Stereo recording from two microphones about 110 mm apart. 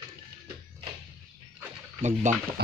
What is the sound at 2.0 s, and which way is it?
Speech, 90° right.